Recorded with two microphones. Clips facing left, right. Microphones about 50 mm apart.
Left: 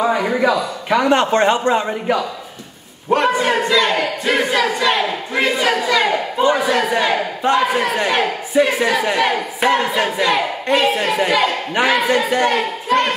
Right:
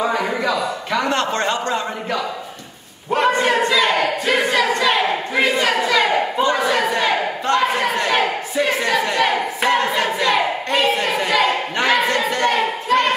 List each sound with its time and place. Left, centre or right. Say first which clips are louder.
0.0 s a man's voice: left 4 dB; centre
3.1 s a man's voice: left 1 dB; centre